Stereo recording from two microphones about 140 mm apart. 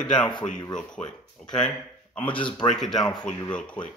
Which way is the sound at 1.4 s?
5° left (ahead or behind).